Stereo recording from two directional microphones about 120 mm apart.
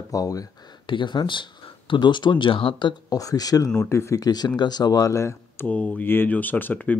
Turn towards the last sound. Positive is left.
turn(degrees=15)  # may be behind; listen again after turning